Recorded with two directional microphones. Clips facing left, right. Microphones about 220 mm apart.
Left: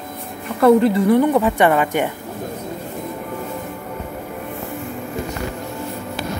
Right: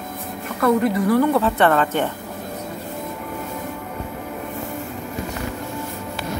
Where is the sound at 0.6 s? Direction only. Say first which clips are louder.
Left 5 dB; 30° left (ahead or behind); by 2.0 s 15° left (ahead or behind).